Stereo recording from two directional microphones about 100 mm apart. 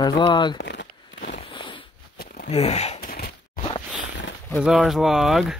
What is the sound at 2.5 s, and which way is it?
Speech, 90° left.